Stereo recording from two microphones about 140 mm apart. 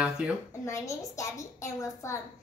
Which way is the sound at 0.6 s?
20° left (ahead or behind).